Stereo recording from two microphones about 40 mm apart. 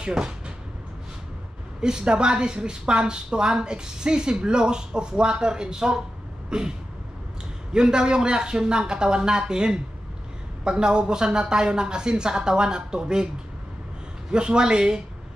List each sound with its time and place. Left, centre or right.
0.0 s speech: right
1.8 s a woman's voice: right
7.7 s a woman's voice: right
14.3 s a woman's voice: right